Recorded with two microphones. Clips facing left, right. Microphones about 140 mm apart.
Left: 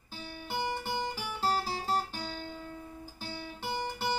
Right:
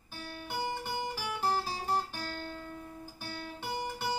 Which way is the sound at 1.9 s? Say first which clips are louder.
Right 1 dB; 10° left (ahead or behind).